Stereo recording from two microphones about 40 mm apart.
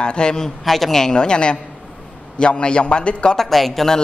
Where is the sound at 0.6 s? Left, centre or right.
Centre.